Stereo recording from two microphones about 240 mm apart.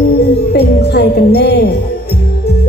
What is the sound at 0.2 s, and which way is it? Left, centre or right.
Music, left.